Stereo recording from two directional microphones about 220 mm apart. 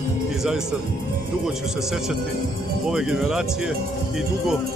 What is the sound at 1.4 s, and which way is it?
Speech, centre (ahead or behind).